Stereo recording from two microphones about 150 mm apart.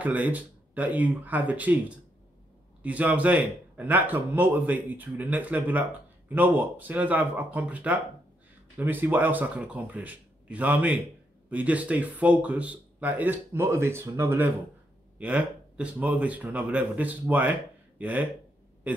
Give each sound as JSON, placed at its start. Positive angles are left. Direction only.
{"t": 0.0, "sound": "speech", "side_deg": -10}